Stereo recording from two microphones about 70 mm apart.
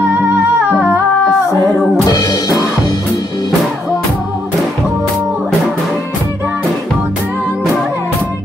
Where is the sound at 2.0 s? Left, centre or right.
Left.